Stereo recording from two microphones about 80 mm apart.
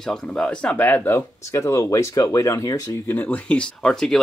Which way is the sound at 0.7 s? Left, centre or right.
Left.